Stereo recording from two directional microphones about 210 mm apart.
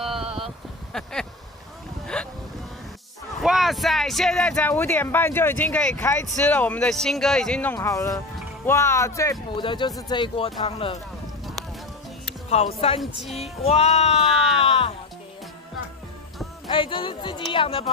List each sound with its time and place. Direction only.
0.2 s a sound: 25° right (ahead or behind)
0.9 s a sound: 5° left (ahead or behind)
2.1 s vehicle: 5° left (ahead or behind)
3.3 s speech: centre (ahead or behind); by 11.0 s 25° left (ahead or behind)
12.4 s speech: 30° left (ahead or behind)
14.2 s speech: centre (ahead or behind)
14.6 s music: 25° left (ahead or behind)
16.6 s speech: 25° left (ahead or behind)